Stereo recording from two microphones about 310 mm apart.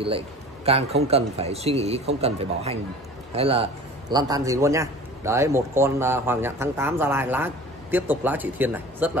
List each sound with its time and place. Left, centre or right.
0.7 s a man's voice: centre